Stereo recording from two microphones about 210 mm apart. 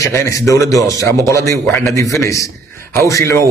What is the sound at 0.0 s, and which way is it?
A man's voice, 15° left (ahead or behind).